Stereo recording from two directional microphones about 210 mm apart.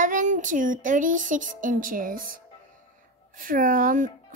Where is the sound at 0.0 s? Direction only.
35° right (ahead or behind).